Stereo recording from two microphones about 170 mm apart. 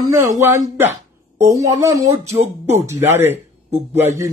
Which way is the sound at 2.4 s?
40° right (ahead or behind).